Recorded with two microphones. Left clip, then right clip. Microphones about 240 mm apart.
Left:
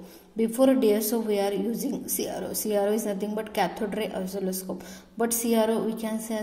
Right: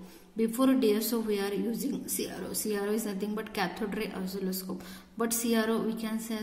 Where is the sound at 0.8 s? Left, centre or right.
Right.